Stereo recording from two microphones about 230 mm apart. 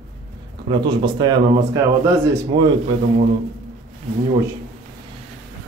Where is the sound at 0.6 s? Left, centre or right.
Centre.